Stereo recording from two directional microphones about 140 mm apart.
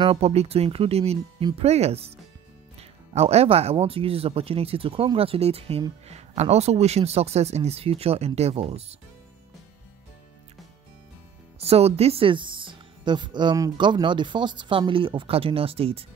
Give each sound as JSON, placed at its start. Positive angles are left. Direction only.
{"t": 0.0, "sound": "speech", "side_deg": -45}
{"t": 2.8, "sound": "music", "side_deg": -50}
{"t": 3.7, "sound": "speech", "side_deg": -40}
{"t": 11.6, "sound": "speech", "side_deg": -45}